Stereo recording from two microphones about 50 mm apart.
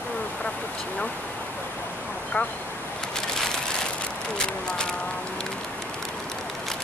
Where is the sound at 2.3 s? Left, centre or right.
Left.